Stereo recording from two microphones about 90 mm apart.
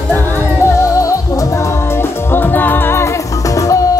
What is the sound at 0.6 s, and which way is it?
Music, 35° left (ahead or behind).